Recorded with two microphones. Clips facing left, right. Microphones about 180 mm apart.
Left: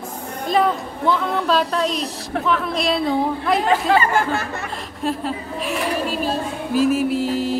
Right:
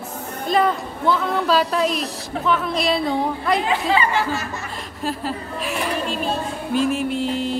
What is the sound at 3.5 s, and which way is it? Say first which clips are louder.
Speech: left 4 dB; 45° left (ahead or behind).